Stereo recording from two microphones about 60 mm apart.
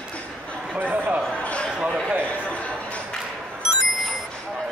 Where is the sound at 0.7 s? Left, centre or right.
Right.